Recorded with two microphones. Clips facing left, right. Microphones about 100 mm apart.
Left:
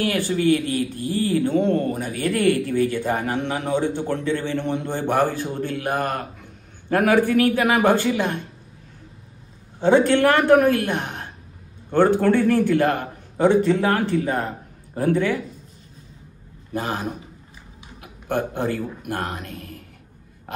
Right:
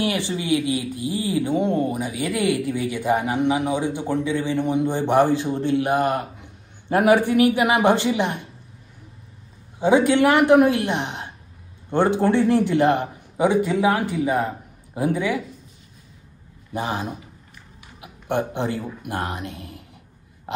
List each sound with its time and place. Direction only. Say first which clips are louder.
0.0 s speech: left 4 dB; 20° right (ahead or behind)
9.8 s a man's voice: even; 15° right (ahead or behind)
16.7 s a man's voice: even; 20° right (ahead or behind)